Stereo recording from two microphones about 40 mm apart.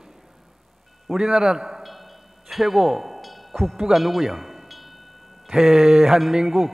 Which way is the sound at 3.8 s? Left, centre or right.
Centre.